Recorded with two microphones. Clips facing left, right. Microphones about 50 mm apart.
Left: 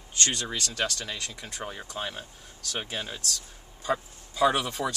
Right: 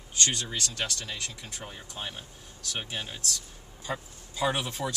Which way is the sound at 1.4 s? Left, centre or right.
Left.